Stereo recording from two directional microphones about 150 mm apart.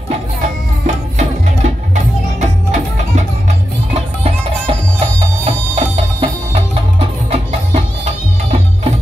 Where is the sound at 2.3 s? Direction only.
55° right (ahead or behind).